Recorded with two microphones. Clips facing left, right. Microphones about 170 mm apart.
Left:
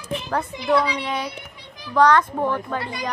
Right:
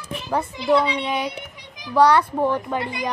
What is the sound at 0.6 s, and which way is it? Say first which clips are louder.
A child's voice: right 2 dB; 25° right (ahead or behind).